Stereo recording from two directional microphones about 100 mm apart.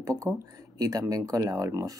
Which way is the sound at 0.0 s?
35° right (ahead or behind).